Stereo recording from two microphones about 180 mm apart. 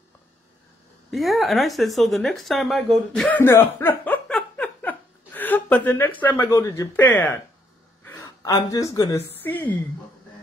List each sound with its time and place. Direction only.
1.1 s a woman's voice: centre (ahead or behind)